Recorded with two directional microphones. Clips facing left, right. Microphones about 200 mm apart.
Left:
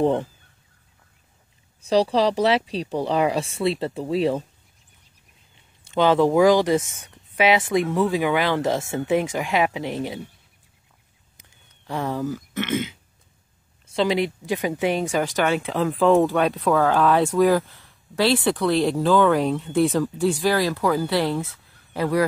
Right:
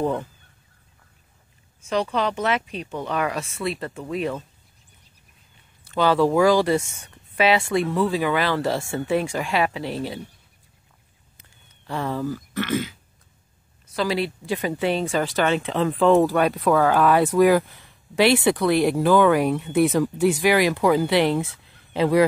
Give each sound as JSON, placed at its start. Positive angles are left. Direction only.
{"t": 0.0, "sound": "a sound", "side_deg": 30}
{"t": 1.8, "sound": "speech", "side_deg": 35}
{"t": 5.9, "sound": "speech", "side_deg": 20}
{"t": 11.8, "sound": "speech", "side_deg": 15}
{"t": 12.5, "sound": "a sound", "side_deg": 20}
{"t": 13.9, "sound": "speech", "side_deg": 20}
{"t": 17.5, "sound": "speech", "side_deg": -15}